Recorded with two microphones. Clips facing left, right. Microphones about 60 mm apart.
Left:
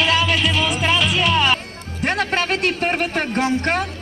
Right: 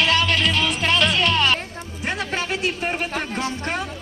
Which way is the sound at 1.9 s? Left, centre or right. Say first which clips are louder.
Left 6 dB; left.